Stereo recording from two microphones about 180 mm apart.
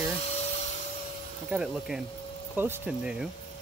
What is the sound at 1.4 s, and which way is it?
Speech, 5° right (ahead or behind).